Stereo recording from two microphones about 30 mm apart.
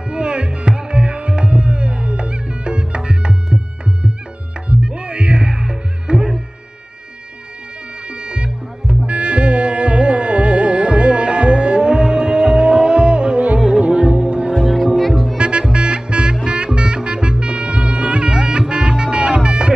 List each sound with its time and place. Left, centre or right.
0.1 s music: right
8.1 s music: right